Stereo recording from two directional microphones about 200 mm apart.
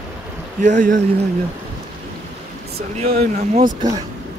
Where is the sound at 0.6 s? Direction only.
40° right (ahead or behind).